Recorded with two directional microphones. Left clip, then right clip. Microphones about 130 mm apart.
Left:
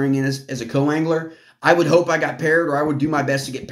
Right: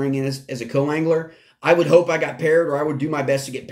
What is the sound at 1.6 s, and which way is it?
Speech, 15° right (ahead or behind).